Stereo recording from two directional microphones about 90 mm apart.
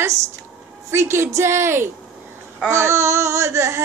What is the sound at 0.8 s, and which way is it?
A woman's voice, 30° right (ahead or behind).